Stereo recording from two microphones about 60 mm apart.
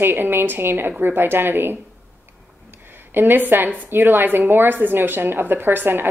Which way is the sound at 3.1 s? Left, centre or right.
Right.